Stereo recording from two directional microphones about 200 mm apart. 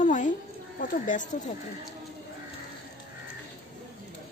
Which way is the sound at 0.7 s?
45° left (ahead or behind).